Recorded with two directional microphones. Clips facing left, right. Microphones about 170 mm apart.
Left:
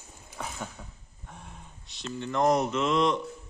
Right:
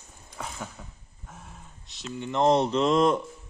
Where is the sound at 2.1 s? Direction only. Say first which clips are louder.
Right 2 dB; 20° right (ahead or behind); by 3.2 s 40° right (ahead or behind).